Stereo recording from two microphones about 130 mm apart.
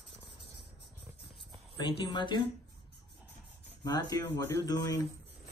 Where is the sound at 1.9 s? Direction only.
35° left (ahead or behind).